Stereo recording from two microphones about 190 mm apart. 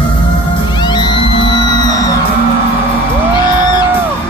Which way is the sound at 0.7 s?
25° left (ahead or behind).